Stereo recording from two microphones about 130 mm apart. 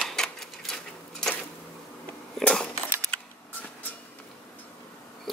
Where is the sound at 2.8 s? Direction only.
20° right (ahead or behind).